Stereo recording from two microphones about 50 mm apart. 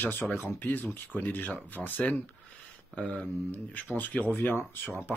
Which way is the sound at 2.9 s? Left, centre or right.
Left.